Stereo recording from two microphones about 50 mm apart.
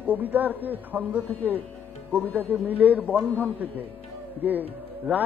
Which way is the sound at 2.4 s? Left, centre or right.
Right.